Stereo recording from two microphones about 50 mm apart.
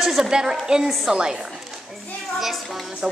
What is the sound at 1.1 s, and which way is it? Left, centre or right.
Speech, centre.